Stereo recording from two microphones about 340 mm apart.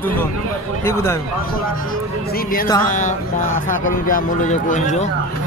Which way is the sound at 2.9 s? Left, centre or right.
Left.